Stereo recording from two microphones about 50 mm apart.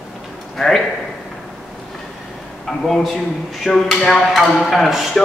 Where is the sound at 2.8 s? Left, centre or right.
Centre.